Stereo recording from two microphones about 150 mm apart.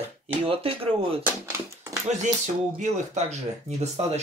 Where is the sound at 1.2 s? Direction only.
15° right (ahead or behind).